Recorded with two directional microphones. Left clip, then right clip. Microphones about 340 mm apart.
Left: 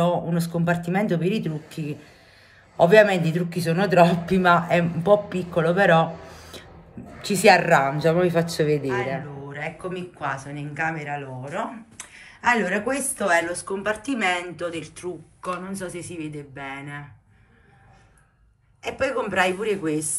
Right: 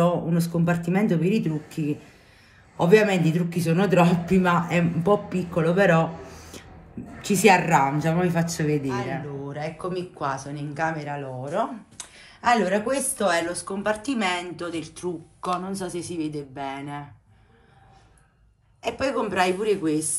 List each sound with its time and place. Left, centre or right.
0.0 s speech: centre
8.6 s speech: left
9.5 s speech: centre
18.8 s speech: centre